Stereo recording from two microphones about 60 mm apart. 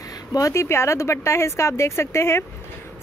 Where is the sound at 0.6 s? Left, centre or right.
Left.